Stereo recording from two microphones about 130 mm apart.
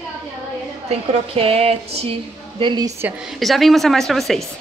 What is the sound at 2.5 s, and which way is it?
Speech, 35° right (ahead or behind).